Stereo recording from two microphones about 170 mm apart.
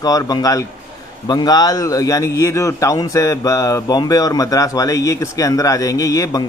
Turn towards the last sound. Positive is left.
turn(degrees=20)  # may be behind; listen again after turning